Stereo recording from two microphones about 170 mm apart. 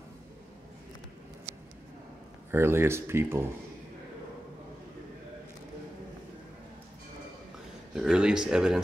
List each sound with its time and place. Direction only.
2.5 s speech: 15° right (ahead or behind)
7.9 s speech: 5° right (ahead or behind)